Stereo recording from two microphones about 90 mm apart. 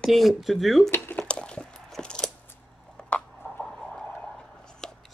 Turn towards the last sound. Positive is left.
turn(degrees=5)  # may be behind; listen again after turning